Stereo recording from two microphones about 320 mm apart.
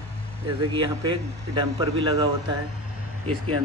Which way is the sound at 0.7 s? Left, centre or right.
Centre.